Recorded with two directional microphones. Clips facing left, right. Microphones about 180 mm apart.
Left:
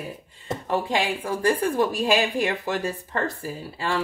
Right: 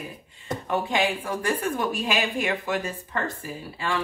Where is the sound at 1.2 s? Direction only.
35° left (ahead or behind).